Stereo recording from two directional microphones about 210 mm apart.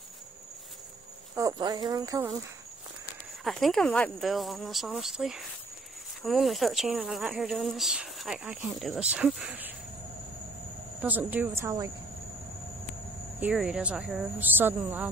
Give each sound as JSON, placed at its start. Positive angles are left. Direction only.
{"t": 1.3, "sound": "speech", "side_deg": -20}
{"t": 3.4, "sound": "speech", "side_deg": 0}
{"t": 11.0, "sound": "speech", "side_deg": -10}
{"t": 13.4, "sound": "speech", "side_deg": -5}